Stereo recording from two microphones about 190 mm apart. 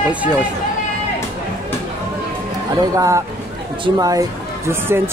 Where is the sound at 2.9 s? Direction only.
15° right (ahead or behind).